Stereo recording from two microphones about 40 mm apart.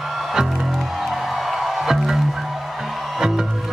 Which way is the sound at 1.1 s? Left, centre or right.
Centre.